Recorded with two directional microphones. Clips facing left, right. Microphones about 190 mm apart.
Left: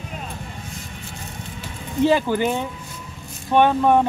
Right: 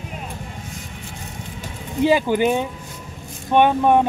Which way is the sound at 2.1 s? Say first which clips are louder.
Right 3 dB; 15° right (ahead or behind).